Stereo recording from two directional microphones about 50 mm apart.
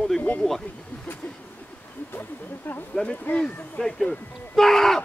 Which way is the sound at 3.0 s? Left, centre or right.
Left.